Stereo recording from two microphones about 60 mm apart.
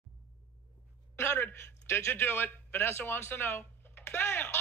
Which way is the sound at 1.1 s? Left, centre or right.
Left.